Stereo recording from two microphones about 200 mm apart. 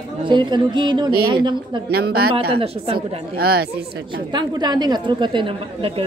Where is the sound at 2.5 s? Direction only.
30° right (ahead or behind).